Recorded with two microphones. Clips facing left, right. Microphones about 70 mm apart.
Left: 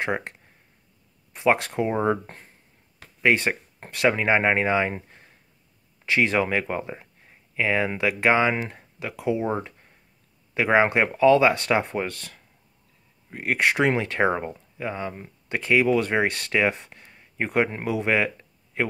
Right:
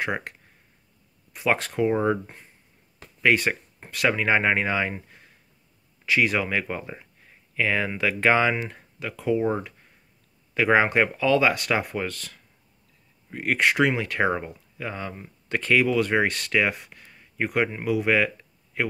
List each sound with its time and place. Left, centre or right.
0.0 s speech: left
3.2 s speech: left